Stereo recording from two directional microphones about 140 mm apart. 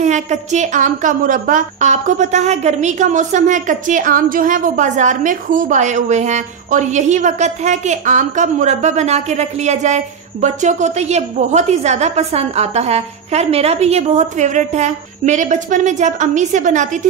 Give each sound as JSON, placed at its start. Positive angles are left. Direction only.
{"t": 0.0, "sound": "a woman's voice", "side_deg": -60}